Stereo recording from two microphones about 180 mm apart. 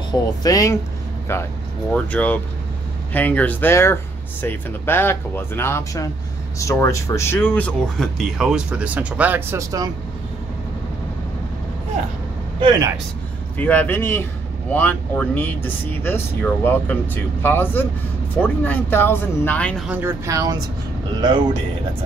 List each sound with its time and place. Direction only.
0.4 s speech: 20° left (ahead or behind); by 9.8 s 20° right (ahead or behind)
12.6 s speech: 30° right (ahead or behind)
13.6 s speech: 10° left (ahead or behind)
19.9 s speech: 10° right (ahead or behind)